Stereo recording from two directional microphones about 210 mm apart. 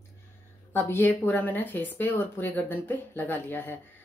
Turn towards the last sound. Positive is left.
turn(degrees=10)  # may be behind; listen again after turning